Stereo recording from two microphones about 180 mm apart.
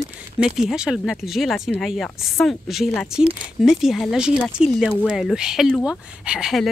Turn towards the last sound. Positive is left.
turn(degrees=0)  # may be behind; listen again after turning